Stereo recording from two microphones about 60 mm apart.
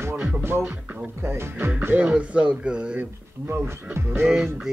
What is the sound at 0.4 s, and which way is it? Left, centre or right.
Speech, right.